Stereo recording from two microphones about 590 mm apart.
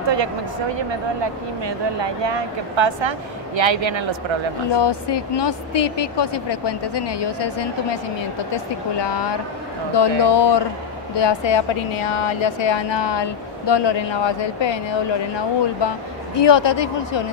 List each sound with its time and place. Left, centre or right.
0.0 s a sound: right
0.7 s speech: right
4.6 s a woman's voice: left